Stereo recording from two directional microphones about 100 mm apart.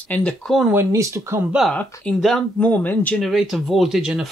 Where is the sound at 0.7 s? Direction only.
25° right (ahead or behind).